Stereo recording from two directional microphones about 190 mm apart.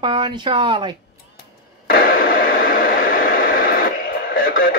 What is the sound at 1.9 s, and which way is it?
Radio, 50° left (ahead or behind).